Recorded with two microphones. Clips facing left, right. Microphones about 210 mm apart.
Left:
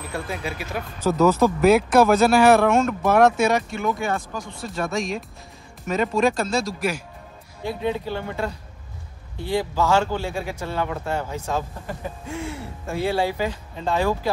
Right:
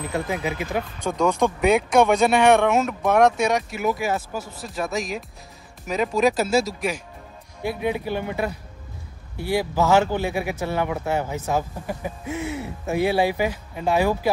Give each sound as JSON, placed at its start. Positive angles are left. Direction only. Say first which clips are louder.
{"t": 0.1, "sound": "speech", "louder": "right 3 dB", "side_deg": -20}
{"t": 1.0, "sound": "speech", "louder": "left 4 dB", "side_deg": 5}
{"t": 7.6, "sound": "speech", "louder": "right 1 dB", "side_deg": -10}